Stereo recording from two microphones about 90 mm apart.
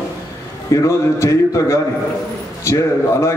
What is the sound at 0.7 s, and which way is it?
A man's voice, 35° left (ahead or behind).